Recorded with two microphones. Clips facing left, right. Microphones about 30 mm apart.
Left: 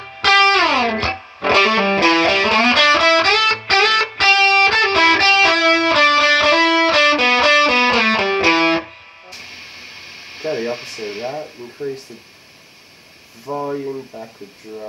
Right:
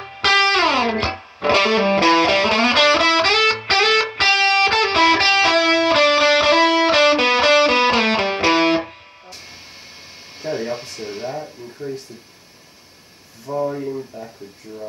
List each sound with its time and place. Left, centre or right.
0.0 s music: centre
9.3 s vehicle: left
10.3 s a sound: left
13.5 s speech: centre